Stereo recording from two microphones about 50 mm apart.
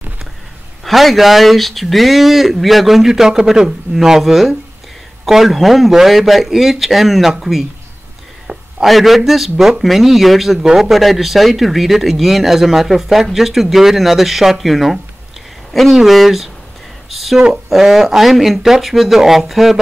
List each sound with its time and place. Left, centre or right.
0.8 s speech: centre
8.5 s a sound: right
8.8 s speech: centre